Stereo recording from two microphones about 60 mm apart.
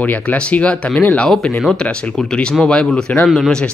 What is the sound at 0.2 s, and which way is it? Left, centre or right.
Speech, centre.